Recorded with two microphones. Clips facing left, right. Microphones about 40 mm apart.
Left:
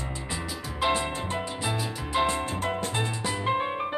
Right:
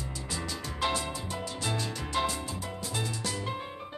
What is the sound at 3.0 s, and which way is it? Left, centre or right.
Music, left.